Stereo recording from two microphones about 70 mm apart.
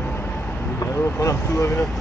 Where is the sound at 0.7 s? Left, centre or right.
Left.